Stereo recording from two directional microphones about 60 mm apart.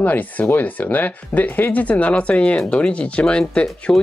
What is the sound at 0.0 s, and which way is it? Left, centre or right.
Speech, left.